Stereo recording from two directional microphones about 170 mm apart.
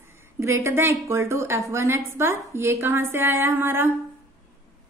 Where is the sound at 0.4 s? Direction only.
15° right (ahead or behind).